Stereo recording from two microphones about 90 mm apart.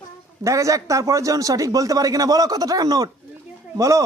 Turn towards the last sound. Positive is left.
turn(degrees=-35)  # may be behind; listen again after turning